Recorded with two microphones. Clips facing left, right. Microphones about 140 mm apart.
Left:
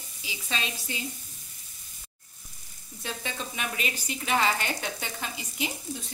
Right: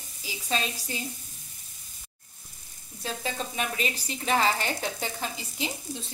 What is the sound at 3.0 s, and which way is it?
A woman's voice, 35° right (ahead or behind).